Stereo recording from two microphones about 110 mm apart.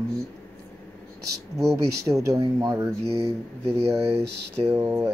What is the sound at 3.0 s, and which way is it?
Speech, 75° right (ahead or behind).